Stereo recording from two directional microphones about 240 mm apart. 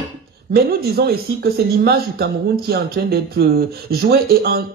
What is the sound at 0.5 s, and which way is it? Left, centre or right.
Speech, right.